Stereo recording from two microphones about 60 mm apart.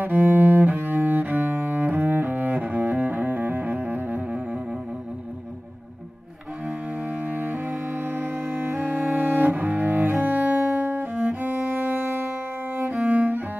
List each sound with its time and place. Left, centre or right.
0.0 s cello: right
7.1 s music: right
8.9 s cello: right
11.2 s music: right
13.0 s cello: right